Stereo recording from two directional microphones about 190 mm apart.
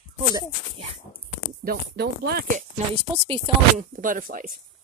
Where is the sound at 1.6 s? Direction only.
55° right (ahead or behind).